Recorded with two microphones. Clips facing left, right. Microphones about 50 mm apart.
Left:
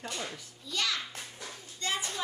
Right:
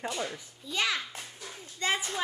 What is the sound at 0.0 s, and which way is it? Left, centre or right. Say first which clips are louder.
A child's voice: right 4 dB; centre.